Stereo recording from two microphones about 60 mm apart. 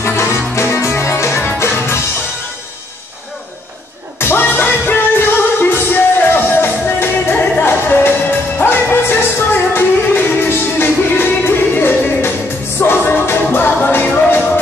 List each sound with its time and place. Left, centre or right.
0.0 s music: left
4.2 s music: left